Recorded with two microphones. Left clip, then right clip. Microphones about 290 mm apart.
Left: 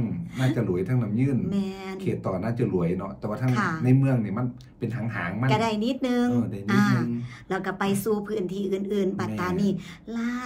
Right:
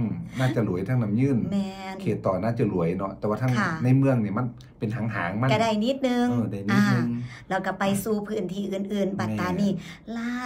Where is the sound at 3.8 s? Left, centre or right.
Centre.